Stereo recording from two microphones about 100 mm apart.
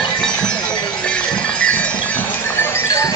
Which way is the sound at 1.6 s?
10° left (ahead or behind).